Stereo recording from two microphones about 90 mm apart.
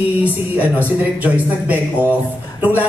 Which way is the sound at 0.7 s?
15° right (ahead or behind).